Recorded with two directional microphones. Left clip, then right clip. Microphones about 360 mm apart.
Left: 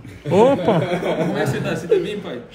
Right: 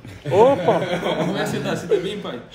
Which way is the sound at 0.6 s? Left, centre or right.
Right.